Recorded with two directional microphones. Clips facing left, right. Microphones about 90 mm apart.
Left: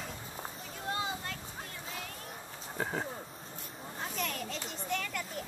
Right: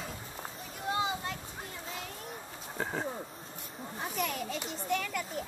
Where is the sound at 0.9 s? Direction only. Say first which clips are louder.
Right 4 dB; 20° right (ahead or behind).